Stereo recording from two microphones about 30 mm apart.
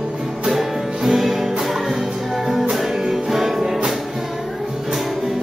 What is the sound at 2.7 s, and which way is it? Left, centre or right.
Music, centre.